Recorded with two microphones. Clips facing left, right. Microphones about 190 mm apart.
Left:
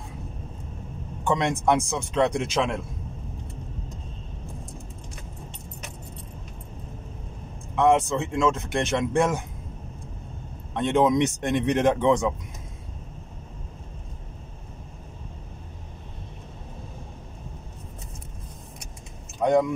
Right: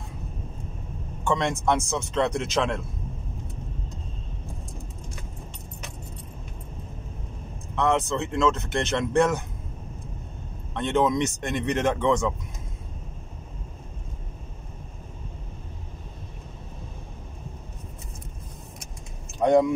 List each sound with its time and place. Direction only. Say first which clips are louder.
1.2 s a man's voice: left 1 dB; 15° left (ahead or behind)
7.7 s speech: left 4 dB; 10° left (ahead or behind)
10.7 s speech: left 2 dB; 15° left (ahead or behind)